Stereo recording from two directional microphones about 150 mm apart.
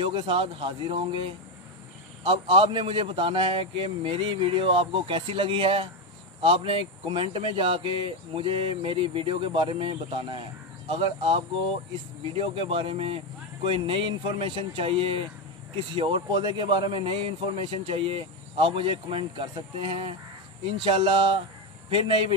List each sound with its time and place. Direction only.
0.0 s a man's voice: 35° right (ahead or behind)
2.2 s a man's voice: 35° right (ahead or behind)